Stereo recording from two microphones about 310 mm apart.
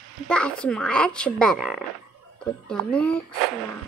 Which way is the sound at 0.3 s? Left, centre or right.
Centre.